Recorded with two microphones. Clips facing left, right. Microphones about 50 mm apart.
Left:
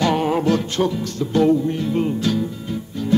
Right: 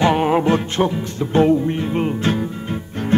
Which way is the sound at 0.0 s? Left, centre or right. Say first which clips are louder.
Right 3 dB; right.